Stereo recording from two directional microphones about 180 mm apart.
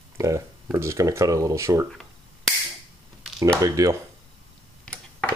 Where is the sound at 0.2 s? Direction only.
15° right (ahead or behind).